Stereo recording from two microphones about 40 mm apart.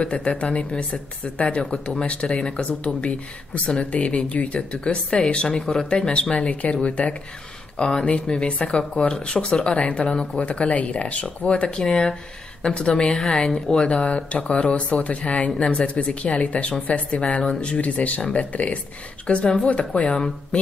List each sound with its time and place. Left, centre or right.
0.0 s speech: left
5.6 s speech: centre
5.9 s speech: left
6.3 s speech: left
7.7 s speech: centre
8.0 s speech: left
13.2 s speech: centre
13.7 s speech: left